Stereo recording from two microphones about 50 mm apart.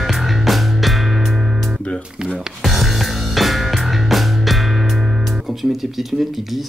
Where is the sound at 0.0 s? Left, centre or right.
Centre.